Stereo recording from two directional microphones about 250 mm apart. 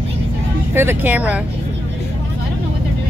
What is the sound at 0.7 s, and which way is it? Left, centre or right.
Speech, centre.